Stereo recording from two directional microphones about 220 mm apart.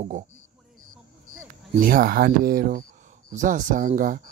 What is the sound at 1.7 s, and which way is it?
Speech, 40° right (ahead or behind).